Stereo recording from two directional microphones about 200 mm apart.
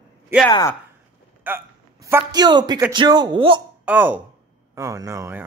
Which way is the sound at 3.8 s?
10° right (ahead or behind).